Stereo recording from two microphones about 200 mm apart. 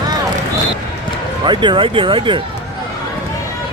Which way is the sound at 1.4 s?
25° right (ahead or behind).